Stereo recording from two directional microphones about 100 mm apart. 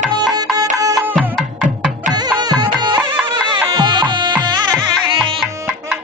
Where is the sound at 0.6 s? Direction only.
35° right (ahead or behind).